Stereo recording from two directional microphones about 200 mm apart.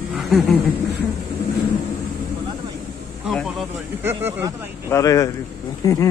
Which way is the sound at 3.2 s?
Centre (ahead or behind).